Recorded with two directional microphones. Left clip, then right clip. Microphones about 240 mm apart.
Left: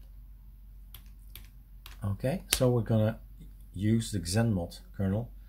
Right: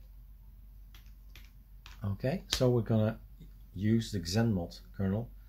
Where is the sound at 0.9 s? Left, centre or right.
Left.